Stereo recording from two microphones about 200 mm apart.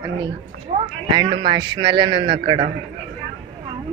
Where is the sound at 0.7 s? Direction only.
30° right (ahead or behind).